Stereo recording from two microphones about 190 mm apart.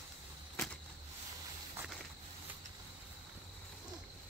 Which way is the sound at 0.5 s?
5° left (ahead or behind).